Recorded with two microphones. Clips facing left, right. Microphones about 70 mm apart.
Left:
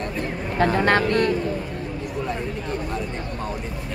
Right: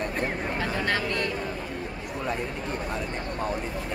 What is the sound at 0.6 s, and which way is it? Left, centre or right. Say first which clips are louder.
Speech: left 11 dB; left.